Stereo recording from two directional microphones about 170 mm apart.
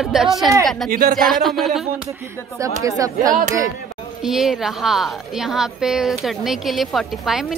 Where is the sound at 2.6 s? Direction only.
20° right (ahead or behind).